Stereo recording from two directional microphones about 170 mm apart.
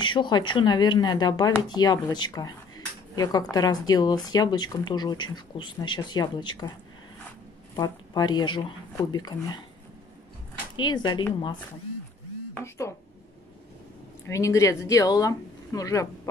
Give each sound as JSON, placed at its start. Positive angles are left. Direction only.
{"t": 0.0, "sound": "speech", "side_deg": 25}
{"t": 7.7, "sound": "speech", "side_deg": 25}
{"t": 10.8, "sound": "speech", "side_deg": 25}
{"t": 12.5, "sound": "speech", "side_deg": 15}
{"t": 14.2, "sound": "speech", "side_deg": 20}